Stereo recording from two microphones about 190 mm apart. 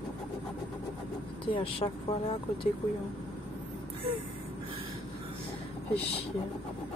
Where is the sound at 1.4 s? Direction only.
30° left (ahead or behind).